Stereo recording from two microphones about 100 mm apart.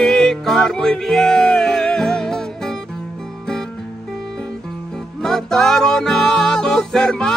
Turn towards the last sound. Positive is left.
turn(degrees=5)  # may be behind; listen again after turning